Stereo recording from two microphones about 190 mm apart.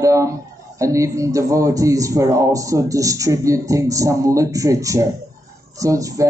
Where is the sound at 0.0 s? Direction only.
15° right (ahead or behind).